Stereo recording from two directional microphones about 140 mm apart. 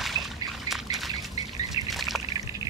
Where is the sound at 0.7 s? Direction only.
Centre (ahead or behind).